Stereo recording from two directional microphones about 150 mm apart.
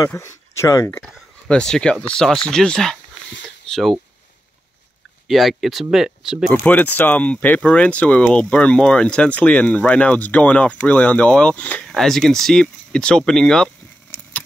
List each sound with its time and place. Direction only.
0.2 s speech: 20° left (ahead or behind)
1.5 s speech: 5° left (ahead or behind)
3.4 s a sound: 5° left (ahead or behind)
5.3 s speech: centre (ahead or behind)
6.6 s speech: 10° left (ahead or behind)